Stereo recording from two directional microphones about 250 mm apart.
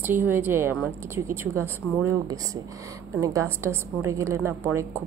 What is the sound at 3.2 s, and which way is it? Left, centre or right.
A woman's voice, centre.